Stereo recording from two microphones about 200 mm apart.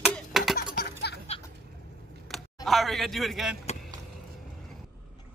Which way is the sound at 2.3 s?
Centre (ahead or behind).